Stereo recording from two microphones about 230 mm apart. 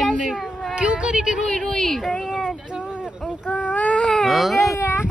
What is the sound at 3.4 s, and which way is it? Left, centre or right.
Baby cry, centre.